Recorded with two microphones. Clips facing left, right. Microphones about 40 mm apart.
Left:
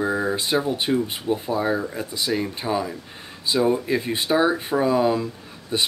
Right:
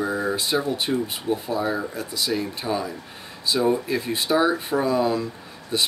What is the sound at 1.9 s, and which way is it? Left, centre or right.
Speech, left.